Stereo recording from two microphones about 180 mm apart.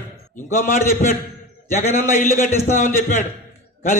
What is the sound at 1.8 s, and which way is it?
A man's voice, 45° left (ahead or behind).